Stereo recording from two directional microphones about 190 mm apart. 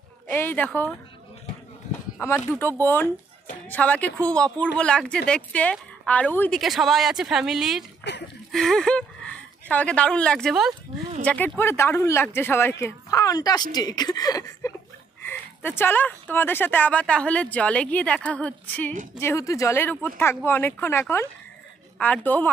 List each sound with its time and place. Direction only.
0.3 s speech: 10° left (ahead or behind)
2.1 s speech: 10° left (ahead or behind)
8.1 s a sound: 65° left (ahead or behind)
8.5 s speech: centre (ahead or behind)